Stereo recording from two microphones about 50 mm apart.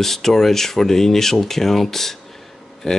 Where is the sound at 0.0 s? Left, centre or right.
Centre.